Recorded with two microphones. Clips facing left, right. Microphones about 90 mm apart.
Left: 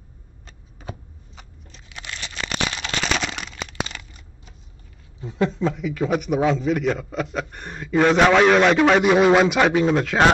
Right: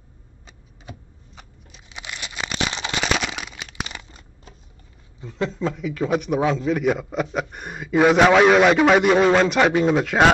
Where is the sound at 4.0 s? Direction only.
30° right (ahead or behind).